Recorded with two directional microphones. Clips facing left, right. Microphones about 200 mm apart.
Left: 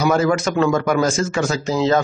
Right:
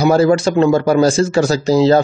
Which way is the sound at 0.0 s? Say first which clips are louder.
Right 5 dB; 30° right (ahead or behind).